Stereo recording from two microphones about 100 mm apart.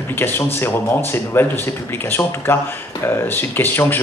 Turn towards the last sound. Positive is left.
turn(degrees=20)  # may be behind; listen again after turning